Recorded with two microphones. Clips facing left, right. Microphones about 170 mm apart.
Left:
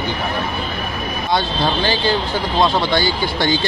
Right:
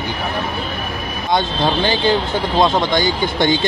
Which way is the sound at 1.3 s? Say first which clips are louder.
Right 2 dB; 20° right (ahead or behind).